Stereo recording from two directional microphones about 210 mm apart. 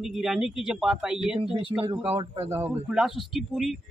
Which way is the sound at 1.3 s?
25° right (ahead or behind).